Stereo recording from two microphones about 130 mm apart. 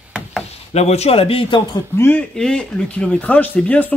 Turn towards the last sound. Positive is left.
turn(degrees=10)  # may be behind; listen again after turning